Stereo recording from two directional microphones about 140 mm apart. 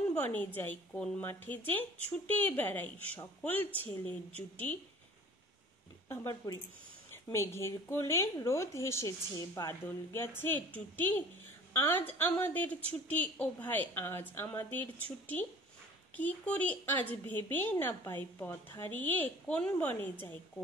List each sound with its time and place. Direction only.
0.2 s a woman's voice: 10° left (ahead or behind)
6.0 s a woman's voice: 25° left (ahead or behind)